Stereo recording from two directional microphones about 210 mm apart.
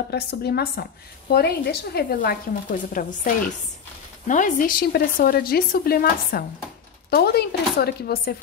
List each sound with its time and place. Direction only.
0.1 s speech: 50° left (ahead or behind)
4.3 s speech: 40° left (ahead or behind)